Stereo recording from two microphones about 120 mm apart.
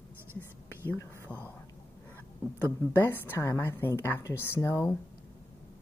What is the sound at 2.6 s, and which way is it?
A woman's voice, 15° left (ahead or behind).